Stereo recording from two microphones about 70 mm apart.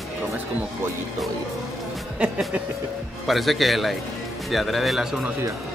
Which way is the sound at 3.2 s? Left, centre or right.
Centre.